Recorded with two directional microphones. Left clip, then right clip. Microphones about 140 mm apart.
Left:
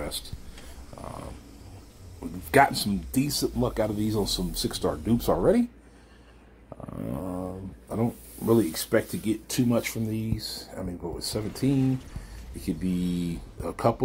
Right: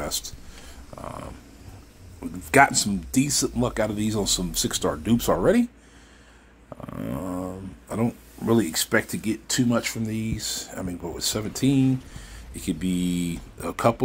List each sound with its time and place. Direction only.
0.6 s a sound: centre (ahead or behind)
2.1 s speech: centre (ahead or behind)
6.7 s speech: 15° right (ahead or behind)
9.5 s speech: 5° left (ahead or behind)
10.9 s speech: 20° right (ahead or behind)
11.4 s speech: 5° right (ahead or behind)